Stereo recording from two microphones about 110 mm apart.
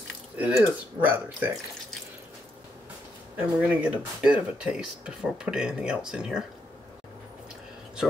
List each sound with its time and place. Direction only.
0.6 s speech: 20° right (ahead or behind)
3.3 s speech: 15° right (ahead or behind)